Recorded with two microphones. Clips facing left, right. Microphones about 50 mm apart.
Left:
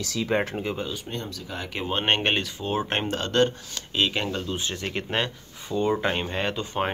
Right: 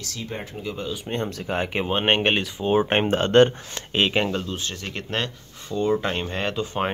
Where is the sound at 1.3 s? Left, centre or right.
Right.